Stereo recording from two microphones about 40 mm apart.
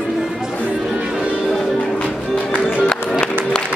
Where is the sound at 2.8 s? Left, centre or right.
Left.